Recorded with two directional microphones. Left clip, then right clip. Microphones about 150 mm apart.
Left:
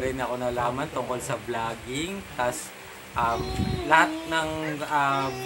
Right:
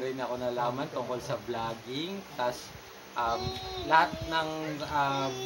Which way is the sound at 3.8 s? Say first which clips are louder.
Left 4 dB; 5° right (ahead or behind).